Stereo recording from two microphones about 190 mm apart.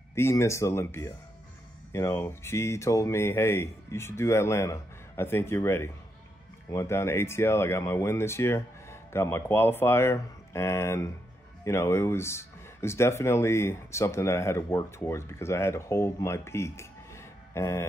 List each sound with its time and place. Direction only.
0.1 s speech: 15° left (ahead or behind)